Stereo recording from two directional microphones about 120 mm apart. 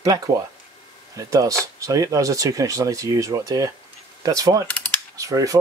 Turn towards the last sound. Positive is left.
turn(degrees=-25)  # may be behind; listen again after turning